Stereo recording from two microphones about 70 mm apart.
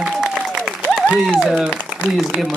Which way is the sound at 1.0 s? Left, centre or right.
Centre.